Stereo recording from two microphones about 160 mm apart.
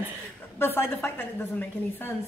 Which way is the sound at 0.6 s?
15° left (ahead or behind).